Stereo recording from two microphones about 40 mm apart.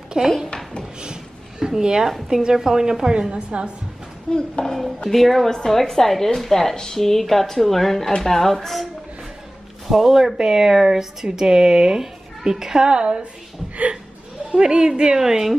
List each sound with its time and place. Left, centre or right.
0.2 s a woman's voice: centre
1.0 s a sound: centre
2.2 s a child's voice: centre
4.3 s speech: left
4.6 s a woman's voice: centre
9.8 s a child's voice: centre; by 13.2 s right
14.5 s a woman's voice: right